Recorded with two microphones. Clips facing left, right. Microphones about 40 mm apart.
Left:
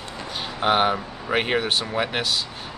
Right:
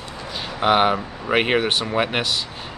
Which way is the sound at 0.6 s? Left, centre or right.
Centre.